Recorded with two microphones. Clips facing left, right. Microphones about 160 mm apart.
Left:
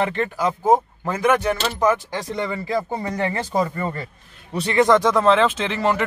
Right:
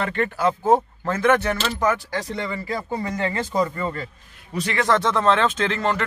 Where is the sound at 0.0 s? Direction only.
20° left (ahead or behind).